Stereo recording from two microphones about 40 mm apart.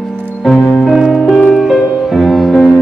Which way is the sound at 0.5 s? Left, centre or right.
Centre.